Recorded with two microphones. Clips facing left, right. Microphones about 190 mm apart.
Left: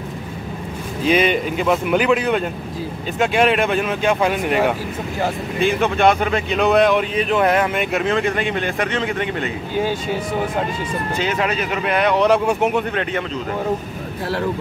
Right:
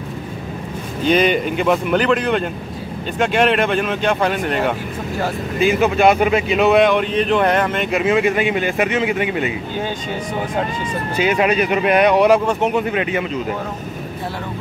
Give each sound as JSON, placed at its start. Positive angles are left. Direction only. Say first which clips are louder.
{"t": 1.0, "sound": "speech", "louder": "right 1 dB", "side_deg": 0}
{"t": 5.6, "sound": "speech", "louder": "right 2 dB", "side_deg": -5}
{"t": 8.0, "sound": "speech", "louder": "right 6 dB", "side_deg": -5}
{"t": 9.8, "sound": "speech", "louder": "left 8 dB", "side_deg": 5}
{"t": 11.1, "sound": "speech", "louder": "right 6 dB", "side_deg": -15}
{"t": 12.4, "sound": "speech", "louder": "even", "side_deg": 5}
{"t": 12.8, "sound": "speech", "louder": "right 3 dB", "side_deg": -5}